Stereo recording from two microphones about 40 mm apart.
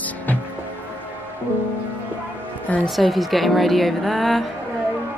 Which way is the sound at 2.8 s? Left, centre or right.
Centre.